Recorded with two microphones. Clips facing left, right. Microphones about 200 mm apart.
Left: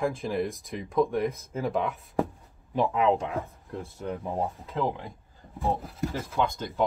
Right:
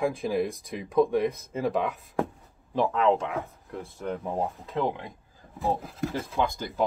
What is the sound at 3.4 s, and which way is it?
Speech, centre (ahead or behind).